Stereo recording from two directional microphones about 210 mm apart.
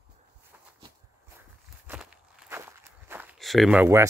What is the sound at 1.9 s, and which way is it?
Walk, 5° right (ahead or behind).